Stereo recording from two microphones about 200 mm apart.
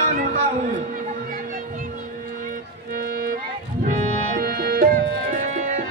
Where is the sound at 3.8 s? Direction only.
40° right (ahead or behind).